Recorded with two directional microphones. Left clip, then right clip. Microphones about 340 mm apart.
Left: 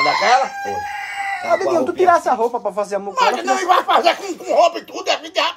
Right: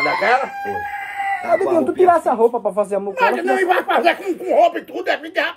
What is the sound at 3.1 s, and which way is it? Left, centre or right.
Speech, centre.